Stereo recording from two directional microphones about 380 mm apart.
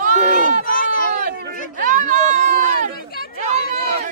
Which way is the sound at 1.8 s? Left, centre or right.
Right.